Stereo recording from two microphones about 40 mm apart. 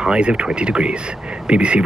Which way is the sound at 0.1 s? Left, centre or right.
Right.